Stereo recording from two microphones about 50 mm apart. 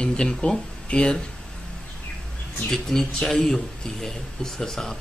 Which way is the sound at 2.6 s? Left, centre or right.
Centre.